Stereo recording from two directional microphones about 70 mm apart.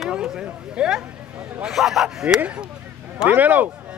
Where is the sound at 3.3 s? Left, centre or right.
Right.